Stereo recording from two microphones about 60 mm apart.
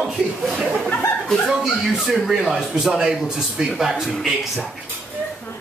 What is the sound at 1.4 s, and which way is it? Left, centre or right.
Speech, centre.